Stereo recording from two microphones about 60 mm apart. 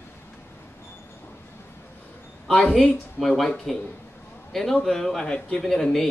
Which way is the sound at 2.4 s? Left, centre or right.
Centre.